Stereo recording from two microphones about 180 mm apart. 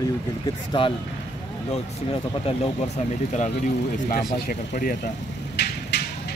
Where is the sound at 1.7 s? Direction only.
35° left (ahead or behind).